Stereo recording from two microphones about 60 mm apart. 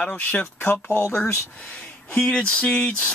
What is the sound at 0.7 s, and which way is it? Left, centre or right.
Speech, left.